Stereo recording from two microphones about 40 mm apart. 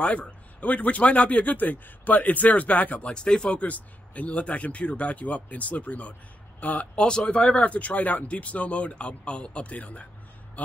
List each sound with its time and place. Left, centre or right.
0.0 s speech: left
3.1 s speech: left
3.6 s speech: left
7.0 s speech: centre; by 10.0 s left